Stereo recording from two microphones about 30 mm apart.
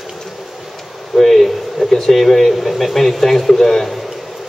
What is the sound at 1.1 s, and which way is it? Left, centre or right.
A man's voice, centre.